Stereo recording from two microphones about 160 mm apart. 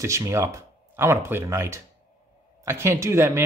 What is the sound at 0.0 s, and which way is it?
Speech, 20° right (ahead or behind).